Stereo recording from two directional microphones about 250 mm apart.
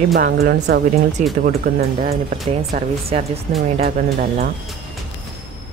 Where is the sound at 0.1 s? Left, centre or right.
Right.